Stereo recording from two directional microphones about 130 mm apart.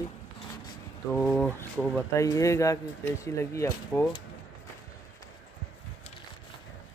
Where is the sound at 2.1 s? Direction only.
25° left (ahead or behind).